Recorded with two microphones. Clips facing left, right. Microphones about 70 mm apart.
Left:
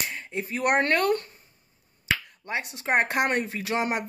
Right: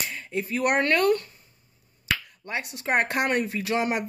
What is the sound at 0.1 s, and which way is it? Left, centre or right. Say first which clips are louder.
Speech: right 2 dB; left.